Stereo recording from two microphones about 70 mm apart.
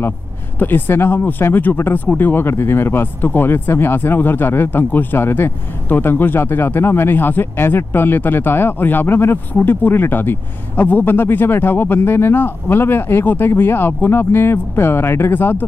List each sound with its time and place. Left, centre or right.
0.6 s speech: left